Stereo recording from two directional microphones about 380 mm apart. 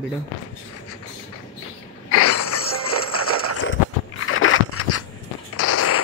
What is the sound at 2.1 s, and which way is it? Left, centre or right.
Music, left.